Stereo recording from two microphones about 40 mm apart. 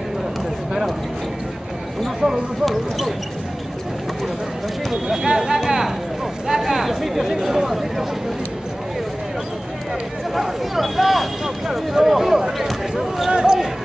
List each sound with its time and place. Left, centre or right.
2.6 s speech: centre
5.0 s speech: centre
10.3 s speech: centre
13.3 s speech: centre